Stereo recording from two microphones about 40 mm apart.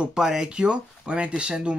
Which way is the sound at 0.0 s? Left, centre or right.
Centre.